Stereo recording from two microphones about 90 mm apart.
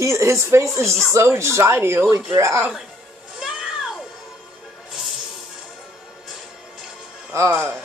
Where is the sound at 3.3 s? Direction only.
5° right (ahead or behind).